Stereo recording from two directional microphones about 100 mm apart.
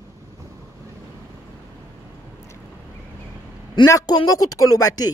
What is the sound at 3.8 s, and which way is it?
Speech, 50° left (ahead or behind).